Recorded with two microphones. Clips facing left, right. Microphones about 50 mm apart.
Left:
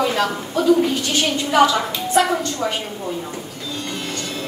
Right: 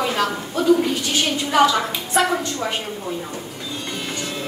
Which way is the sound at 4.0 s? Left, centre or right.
Centre.